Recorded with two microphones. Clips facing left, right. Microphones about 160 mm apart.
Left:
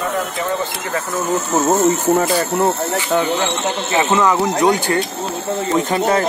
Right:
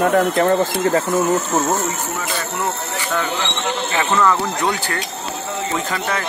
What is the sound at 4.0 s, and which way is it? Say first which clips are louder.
Speech: left 2 dB; 15° left (ahead or behind).